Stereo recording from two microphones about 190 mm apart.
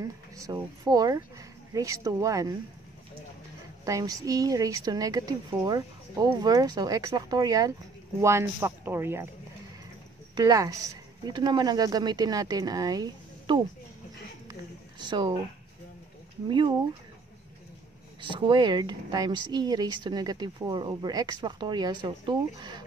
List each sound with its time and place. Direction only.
0.0 s speech: 20° right (ahead or behind)
3.8 s a man's voice: 20° right (ahead or behind)
10.3 s speech: 20° right (ahead or behind)
14.5 s a sound: 25° right (ahead or behind)
16.4 s speech: 25° right (ahead or behind)
18.3 s speech: 25° right (ahead or behind)